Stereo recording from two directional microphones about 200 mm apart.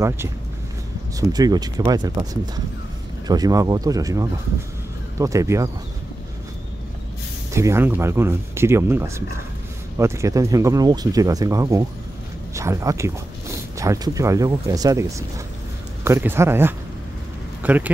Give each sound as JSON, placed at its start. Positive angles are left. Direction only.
{"t": 0.0, "sound": "speech", "side_deg": -10}
{"t": 1.3, "sound": "speech", "side_deg": -20}
{"t": 7.5, "sound": "speech", "side_deg": -15}
{"t": 17.6, "sound": "a sound", "side_deg": -10}